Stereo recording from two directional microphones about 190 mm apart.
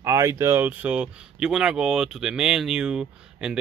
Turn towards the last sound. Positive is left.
turn(degrees=-5)  # may be behind; listen again after turning